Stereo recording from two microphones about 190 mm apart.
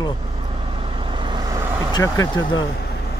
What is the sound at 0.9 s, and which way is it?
Vehicle, 25° right (ahead or behind).